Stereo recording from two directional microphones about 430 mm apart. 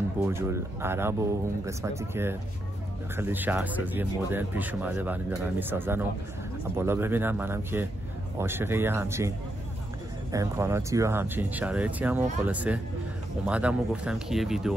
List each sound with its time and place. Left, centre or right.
0.3 s speech: centre
10.3 s speech: centre